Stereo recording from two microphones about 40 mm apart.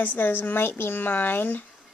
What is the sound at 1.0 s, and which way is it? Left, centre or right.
Speech, left.